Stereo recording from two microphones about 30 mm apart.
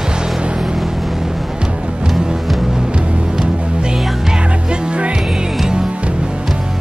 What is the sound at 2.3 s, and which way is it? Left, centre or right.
Music, centre.